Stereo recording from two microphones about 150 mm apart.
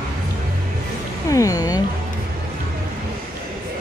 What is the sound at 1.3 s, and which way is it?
Speech, 25° left (ahead or behind).